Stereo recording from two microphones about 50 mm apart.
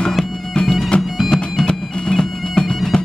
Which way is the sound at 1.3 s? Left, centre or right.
Centre.